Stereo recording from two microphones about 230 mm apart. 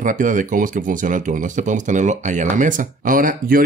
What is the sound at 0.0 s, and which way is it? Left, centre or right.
Speech, right.